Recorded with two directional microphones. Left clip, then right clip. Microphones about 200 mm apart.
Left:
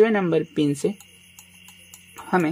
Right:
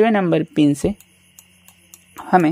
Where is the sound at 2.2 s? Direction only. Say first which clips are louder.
Right 7 dB; 35° right (ahead or behind).